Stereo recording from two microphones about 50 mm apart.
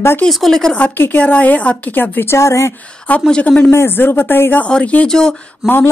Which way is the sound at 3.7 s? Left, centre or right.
Left.